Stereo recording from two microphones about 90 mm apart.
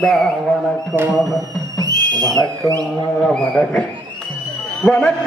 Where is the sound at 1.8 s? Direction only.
45° right (ahead or behind).